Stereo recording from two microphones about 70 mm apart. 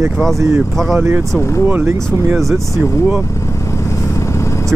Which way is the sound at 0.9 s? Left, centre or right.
Right.